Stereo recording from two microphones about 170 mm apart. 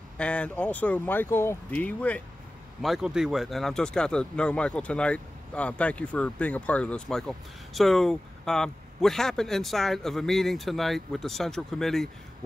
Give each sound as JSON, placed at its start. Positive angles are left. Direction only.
{"t": 0.2, "sound": "speech", "side_deg": 5}
{"t": 2.8, "sound": "speech", "side_deg": -5}